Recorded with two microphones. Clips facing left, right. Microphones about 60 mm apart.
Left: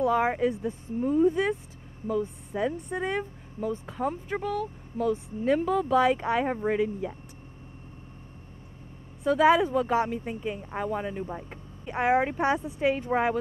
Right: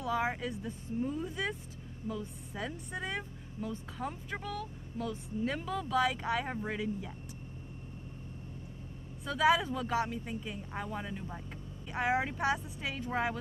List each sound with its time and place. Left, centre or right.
0.0 s speech: left
1.0 s speech: left
9.2 s speech: left